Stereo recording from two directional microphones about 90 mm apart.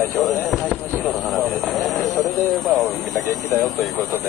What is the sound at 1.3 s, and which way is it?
Speech, centre (ahead or behind).